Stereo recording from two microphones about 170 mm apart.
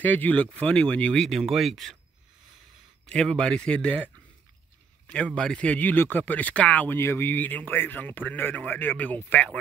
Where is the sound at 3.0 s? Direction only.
5° left (ahead or behind).